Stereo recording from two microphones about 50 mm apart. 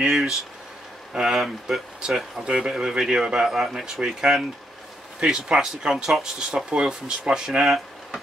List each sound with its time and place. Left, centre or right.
0.1 s speech: centre
6.0 s speech: centre
6.7 s speech: centre